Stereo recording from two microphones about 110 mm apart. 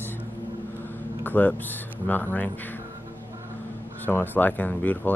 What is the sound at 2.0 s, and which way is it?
Speech, 15° left (ahead or behind).